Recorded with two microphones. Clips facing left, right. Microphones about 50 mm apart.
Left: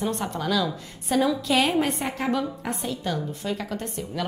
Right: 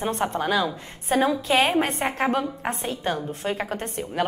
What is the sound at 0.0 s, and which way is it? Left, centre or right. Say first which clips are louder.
A woman's voice: right 3 dB; right.